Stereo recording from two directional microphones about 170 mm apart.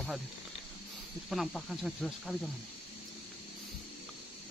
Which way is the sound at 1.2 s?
Centre (ahead or behind).